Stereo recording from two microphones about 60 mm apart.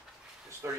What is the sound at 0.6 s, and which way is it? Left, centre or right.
Speech, right.